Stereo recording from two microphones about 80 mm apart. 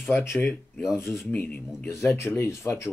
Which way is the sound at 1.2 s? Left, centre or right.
Centre.